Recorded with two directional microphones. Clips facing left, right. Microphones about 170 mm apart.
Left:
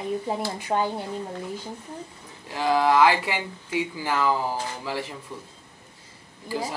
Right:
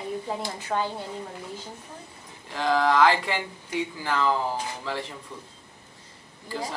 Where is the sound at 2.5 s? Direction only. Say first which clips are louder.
Left 2 dB; 10° left (ahead or behind).